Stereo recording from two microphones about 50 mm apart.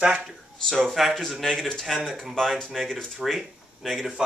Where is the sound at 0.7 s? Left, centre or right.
Centre.